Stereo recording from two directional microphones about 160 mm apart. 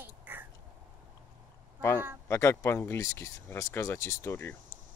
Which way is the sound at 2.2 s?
20° left (ahead or behind).